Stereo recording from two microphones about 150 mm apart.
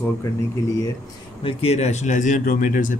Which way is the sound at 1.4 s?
45° left (ahead or behind).